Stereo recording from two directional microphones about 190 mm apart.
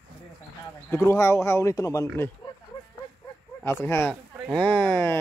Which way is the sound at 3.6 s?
10° left (ahead or behind).